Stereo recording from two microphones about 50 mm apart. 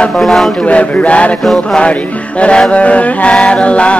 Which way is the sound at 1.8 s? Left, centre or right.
Left.